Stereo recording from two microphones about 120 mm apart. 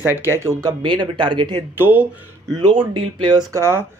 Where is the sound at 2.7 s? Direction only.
45° right (ahead or behind).